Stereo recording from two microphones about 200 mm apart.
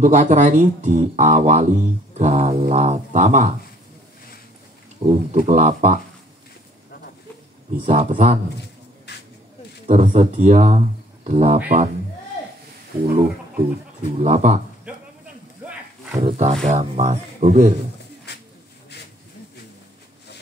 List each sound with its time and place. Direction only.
0.0 s speech: 40° right (ahead or behind)
5.0 s speech: 35° right (ahead or behind)
7.7 s speech: 40° right (ahead or behind)
9.1 s a sound: 60° left (ahead or behind)
9.8 s speech: 35° right (ahead or behind)
14.0 s speech: 30° right (ahead or behind)
16.2 s speech: 35° right (ahead or behind)
18.3 s pigeon: 55° left (ahead or behind)